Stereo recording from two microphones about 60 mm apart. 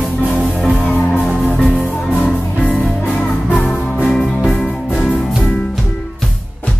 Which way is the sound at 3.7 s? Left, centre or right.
Centre.